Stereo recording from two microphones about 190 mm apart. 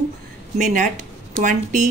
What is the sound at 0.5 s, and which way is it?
Speech, 40° right (ahead or behind).